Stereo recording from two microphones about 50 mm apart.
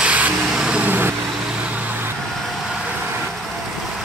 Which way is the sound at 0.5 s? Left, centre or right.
Centre.